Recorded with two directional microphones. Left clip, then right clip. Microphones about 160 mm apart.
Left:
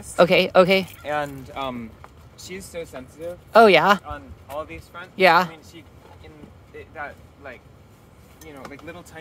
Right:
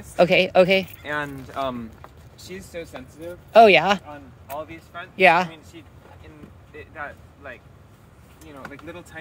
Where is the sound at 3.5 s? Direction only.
30° left (ahead or behind).